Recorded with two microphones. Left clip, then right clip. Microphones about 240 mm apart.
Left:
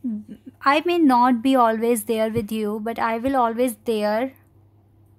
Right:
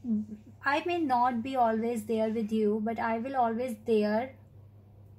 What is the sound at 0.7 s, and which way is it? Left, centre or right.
A woman's voice, left.